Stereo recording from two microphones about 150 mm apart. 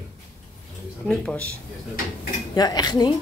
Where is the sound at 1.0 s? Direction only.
5° left (ahead or behind).